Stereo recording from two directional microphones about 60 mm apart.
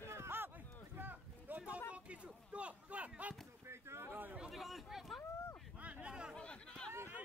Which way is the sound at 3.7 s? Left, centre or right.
Right.